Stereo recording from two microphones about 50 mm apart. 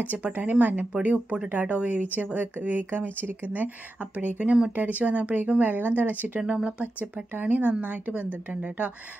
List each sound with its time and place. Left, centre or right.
0.0 s speech: right
1.0 s speech: right
6.4 s speech: right